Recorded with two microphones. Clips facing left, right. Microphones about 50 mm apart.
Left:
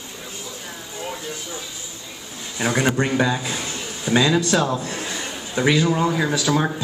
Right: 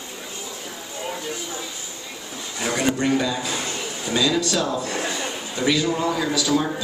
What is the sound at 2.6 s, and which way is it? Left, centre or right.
A man's voice, left.